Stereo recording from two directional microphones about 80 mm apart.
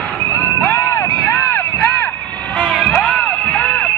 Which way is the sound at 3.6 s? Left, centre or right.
Centre.